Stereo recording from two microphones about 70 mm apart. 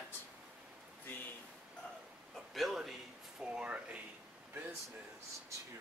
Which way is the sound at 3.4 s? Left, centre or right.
Centre.